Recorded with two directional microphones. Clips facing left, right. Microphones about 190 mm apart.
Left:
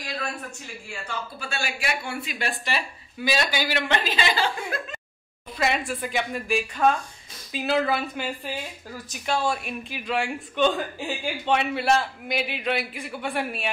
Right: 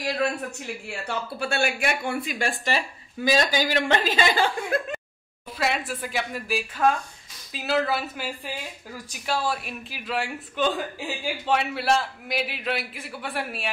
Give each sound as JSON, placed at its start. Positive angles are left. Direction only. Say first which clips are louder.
{"t": 0.0, "sound": "a man's voice", "louder": "right 7 dB", "side_deg": -65}
{"t": 5.6, "sound": "speech", "louder": "left 1 dB", "side_deg": 0}